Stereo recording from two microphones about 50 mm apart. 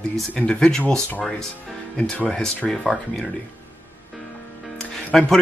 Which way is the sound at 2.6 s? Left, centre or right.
Centre.